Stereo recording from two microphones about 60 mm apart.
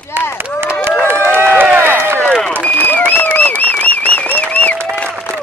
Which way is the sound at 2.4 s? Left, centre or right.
Left.